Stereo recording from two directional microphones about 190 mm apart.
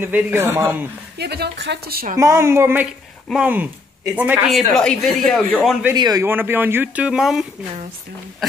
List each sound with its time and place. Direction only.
0.0 s speech: 10° right (ahead or behind)
1.1 s a woman's voice: 60° right (ahead or behind)
2.1 s speech: 15° right (ahead or behind)
5.9 s speech: 20° right (ahead or behind); by 7.4 s centre (ahead or behind)